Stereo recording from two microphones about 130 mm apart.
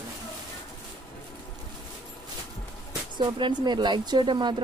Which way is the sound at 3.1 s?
35° right (ahead or behind).